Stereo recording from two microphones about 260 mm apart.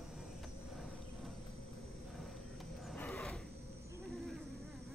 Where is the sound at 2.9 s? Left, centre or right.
Centre.